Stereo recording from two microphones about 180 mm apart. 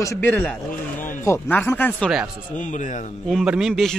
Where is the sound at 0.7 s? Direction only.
50° left (ahead or behind).